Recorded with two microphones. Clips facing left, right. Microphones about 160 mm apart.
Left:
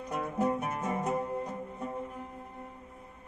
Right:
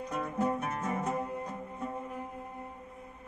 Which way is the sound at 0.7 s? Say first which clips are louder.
Left 1 dB; 15° left (ahead or behind).